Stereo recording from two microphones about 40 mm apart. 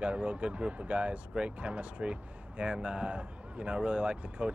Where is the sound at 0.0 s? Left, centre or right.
Right.